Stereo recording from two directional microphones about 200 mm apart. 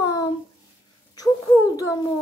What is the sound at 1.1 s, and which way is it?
Speech, 15° left (ahead or behind).